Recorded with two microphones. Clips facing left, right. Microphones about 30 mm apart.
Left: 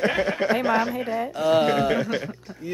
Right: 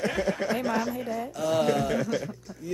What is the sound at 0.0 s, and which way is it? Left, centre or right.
Speech, left.